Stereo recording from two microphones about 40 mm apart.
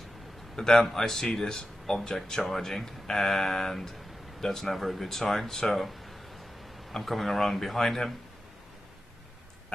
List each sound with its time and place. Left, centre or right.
0.6 s speech: centre